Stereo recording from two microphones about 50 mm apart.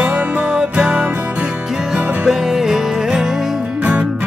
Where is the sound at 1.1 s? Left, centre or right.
Right.